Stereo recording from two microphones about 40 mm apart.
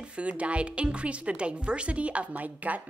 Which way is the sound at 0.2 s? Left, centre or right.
Right.